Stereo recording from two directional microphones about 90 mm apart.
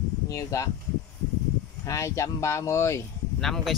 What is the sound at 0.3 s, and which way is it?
Speech, 35° left (ahead or behind).